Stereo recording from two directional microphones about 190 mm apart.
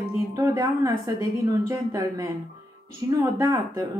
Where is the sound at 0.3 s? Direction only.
15° right (ahead or behind).